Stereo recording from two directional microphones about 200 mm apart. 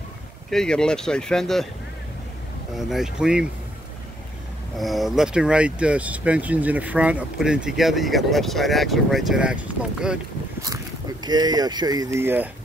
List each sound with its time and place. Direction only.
0.5 s speech: 5° left (ahead or behind)
2.8 s speech: centre (ahead or behind)
4.7 s speech: centre (ahead or behind)
11.2 s speech: 20° right (ahead or behind)